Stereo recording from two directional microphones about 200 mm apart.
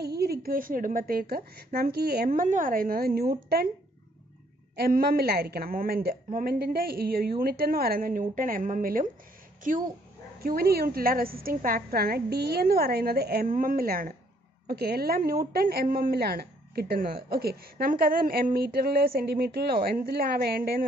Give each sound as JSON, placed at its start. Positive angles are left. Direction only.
{"t": 0.0, "sound": "speech", "side_deg": -55}
{"t": 4.7, "sound": "a woman's voice", "side_deg": -50}